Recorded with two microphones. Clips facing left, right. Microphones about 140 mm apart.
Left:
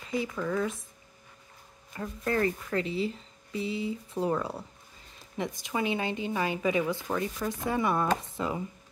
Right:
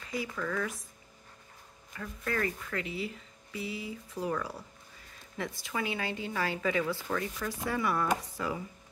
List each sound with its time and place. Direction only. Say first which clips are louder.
0.1 s speech: left 4 dB; 25° left (ahead or behind)
2.0 s speech: left 5 dB; 30° left (ahead or behind)